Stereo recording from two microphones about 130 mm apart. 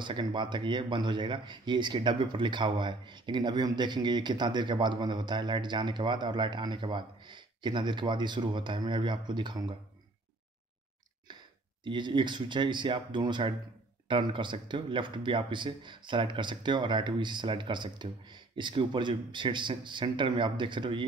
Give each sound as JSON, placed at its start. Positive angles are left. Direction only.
{"t": 0.0, "sound": "speech", "side_deg": -40}
{"t": 11.8, "sound": "speech", "side_deg": -40}